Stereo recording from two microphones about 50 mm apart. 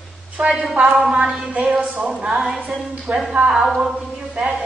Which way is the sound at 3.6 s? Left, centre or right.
Centre.